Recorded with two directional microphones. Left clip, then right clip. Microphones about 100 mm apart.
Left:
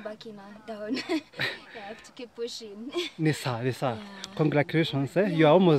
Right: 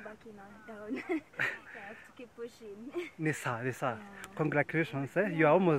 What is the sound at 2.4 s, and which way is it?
Speech, 20° left (ahead or behind).